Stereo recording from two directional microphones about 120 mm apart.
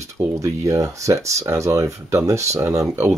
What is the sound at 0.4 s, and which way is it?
Speech, 25° right (ahead or behind).